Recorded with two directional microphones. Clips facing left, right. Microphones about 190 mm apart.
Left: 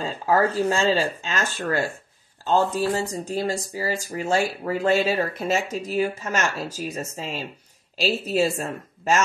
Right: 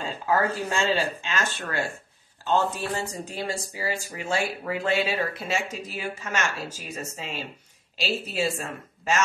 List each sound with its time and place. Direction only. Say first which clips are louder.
0.0 s speech: left 4 dB; 35° left (ahead or behind)